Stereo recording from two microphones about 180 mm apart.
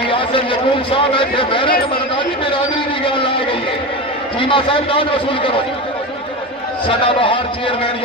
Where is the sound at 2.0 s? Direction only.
30° left (ahead or behind).